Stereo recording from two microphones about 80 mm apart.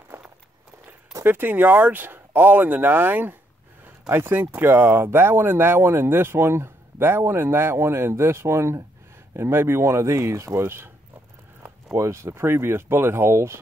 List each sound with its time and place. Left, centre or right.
0.1 s walk: right
1.2 s speech: right